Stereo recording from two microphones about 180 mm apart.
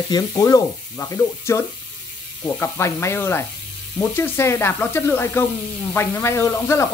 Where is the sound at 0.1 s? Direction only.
20° left (ahead or behind).